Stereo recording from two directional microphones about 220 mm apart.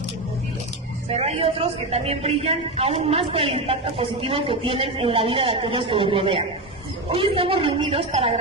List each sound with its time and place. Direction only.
1.1 s a man's voice: 25° right (ahead or behind)